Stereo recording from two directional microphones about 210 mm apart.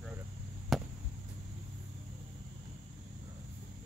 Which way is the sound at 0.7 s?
Centre (ahead or behind).